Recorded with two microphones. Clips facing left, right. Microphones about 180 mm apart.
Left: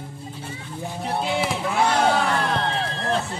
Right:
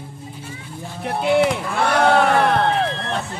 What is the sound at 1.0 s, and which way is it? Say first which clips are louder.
Speech: right 6 dB; 60° right (ahead or behind).